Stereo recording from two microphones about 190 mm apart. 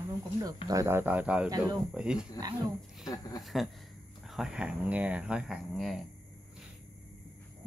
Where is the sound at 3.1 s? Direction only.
20° left (ahead or behind).